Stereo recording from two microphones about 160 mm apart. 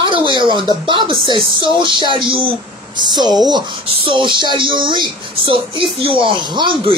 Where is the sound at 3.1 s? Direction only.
25° right (ahead or behind).